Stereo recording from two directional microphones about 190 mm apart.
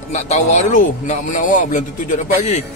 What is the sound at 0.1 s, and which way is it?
A man's voice, 35° left (ahead or behind).